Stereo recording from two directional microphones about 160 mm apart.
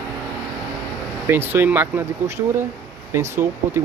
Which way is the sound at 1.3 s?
15° right (ahead or behind).